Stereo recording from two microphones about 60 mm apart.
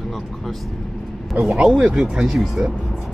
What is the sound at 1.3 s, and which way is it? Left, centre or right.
Speech, centre.